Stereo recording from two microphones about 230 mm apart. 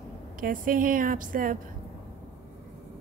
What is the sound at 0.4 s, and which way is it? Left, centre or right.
A woman's voice, right.